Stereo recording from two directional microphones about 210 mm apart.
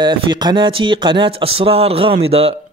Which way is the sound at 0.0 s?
20° right (ahead or behind).